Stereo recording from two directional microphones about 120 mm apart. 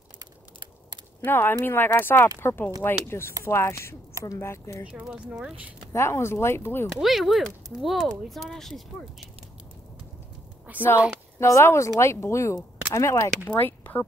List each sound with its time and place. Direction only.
1.2 s speech: 15° left (ahead or behind)
5.0 s speech: 5° right (ahead or behind)
5.9 s speech: 20° left (ahead or behind)
7.0 s speech: centre (ahead or behind)
10.7 s speech: 15° right (ahead or behind)
11.3 s speech: 25° left (ahead or behind)
13.5 s speech: 15° left (ahead or behind)